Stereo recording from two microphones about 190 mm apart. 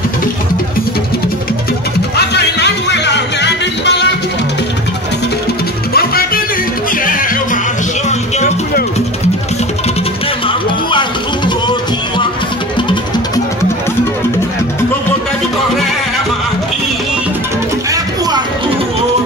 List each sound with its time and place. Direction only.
2.1 s music: 60° left (ahead or behind)
5.9 s music: 50° left (ahead or behind)
8.1 s music: 35° left (ahead or behind)
10.9 s music: 25° left (ahead or behind)